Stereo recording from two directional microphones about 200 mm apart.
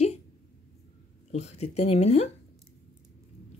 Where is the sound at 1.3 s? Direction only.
35° left (ahead or behind).